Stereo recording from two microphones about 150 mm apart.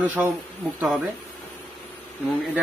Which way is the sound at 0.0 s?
10° right (ahead or behind).